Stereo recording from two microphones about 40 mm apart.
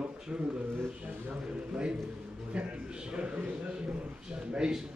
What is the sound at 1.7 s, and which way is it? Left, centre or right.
A man's voice, right.